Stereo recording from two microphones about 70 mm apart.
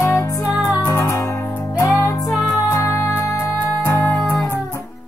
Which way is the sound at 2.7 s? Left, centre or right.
Left.